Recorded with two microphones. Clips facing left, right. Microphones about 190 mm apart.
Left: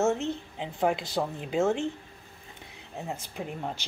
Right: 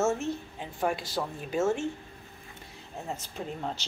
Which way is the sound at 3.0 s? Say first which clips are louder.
Even; 10° left (ahead or behind).